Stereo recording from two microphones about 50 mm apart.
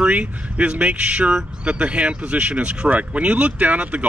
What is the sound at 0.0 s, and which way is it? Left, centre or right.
Speech, right.